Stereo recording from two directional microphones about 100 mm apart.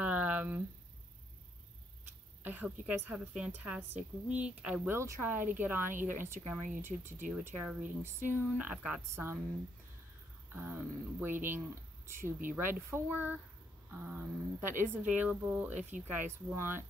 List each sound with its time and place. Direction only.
0.0 s a sound: 15° right (ahead or behind)
2.4 s speech: 15° right (ahead or behind)
4.9 s speech: 30° right (ahead or behind)
5.3 s speech: 20° right (ahead or behind)
9.1 s speech: 25° right (ahead or behind)
10.5 s speech: 20° right (ahead or behind)